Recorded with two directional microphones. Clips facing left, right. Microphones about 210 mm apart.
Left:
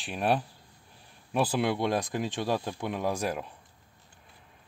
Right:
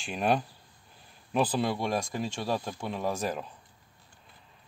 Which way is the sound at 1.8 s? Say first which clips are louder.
Left 2 dB; 20° left (ahead or behind).